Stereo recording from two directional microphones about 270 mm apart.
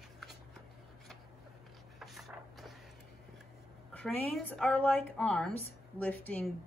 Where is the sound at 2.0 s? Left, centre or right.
Centre.